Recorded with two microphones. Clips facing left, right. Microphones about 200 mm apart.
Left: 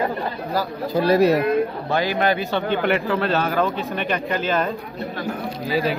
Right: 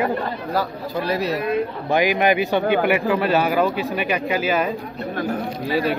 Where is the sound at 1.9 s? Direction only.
15° right (ahead or behind).